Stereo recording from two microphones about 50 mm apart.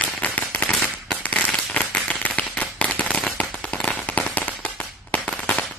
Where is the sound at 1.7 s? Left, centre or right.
Left.